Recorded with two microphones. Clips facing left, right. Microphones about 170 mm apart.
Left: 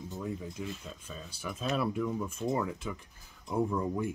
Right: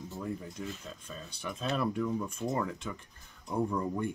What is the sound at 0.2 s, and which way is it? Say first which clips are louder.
Speech: even; 5° left (ahead or behind).